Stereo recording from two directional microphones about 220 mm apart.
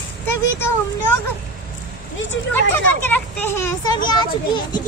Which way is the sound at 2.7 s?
10° left (ahead or behind).